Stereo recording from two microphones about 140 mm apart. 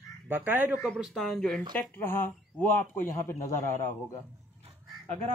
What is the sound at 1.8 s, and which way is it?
Speech, 15° left (ahead or behind).